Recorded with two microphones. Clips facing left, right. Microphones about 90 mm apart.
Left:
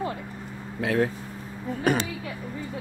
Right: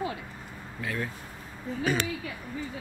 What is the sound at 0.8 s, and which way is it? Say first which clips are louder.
Speech: left 10 dB; 85° left.